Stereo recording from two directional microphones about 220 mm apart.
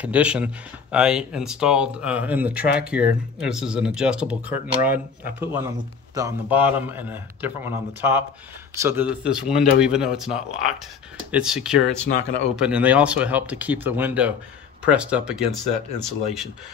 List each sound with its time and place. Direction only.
0.0 s a man's voice: 5° right (ahead or behind)